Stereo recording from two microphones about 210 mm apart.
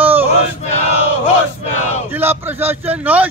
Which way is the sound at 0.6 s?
30° left (ahead or behind).